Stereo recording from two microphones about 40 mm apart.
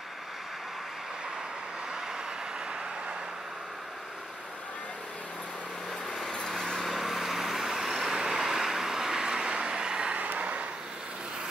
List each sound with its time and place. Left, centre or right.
6.5 s vehicle: centre; by 10.7 s right